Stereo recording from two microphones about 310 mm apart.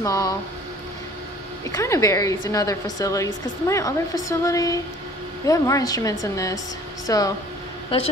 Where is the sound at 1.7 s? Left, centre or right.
Centre.